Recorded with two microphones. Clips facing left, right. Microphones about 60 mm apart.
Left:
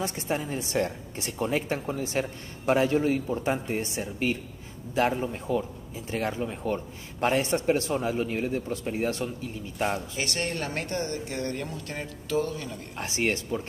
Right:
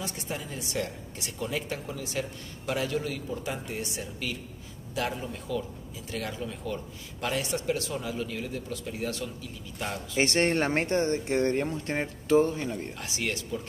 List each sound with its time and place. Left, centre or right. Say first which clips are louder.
0.0 s a woman's voice: left 6 dB; left
10.1 s speech: right 6 dB; right
12.9 s a woman's voice: left 5 dB; left